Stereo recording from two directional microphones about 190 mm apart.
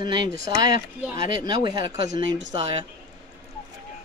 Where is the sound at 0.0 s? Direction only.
20° right (ahead or behind).